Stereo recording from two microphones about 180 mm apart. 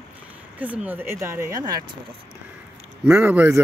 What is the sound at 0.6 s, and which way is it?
Speech, 10° right (ahead or behind).